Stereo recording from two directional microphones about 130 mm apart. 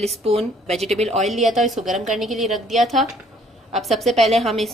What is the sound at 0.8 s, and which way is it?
Speech, 55° right (ahead or behind).